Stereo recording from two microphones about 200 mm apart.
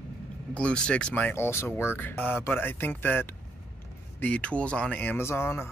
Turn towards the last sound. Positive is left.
turn(degrees=10)  # may be behind; listen again after turning